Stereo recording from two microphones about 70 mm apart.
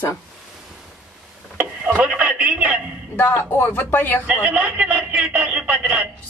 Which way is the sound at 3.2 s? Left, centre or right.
Left.